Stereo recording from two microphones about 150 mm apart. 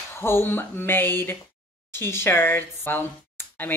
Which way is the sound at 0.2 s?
15° left (ahead or behind).